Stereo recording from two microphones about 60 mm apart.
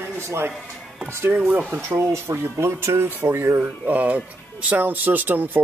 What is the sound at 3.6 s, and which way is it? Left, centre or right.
Speech, right.